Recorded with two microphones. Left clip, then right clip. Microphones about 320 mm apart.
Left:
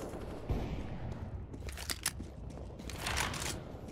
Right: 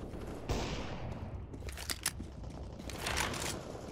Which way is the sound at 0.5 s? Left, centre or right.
Right.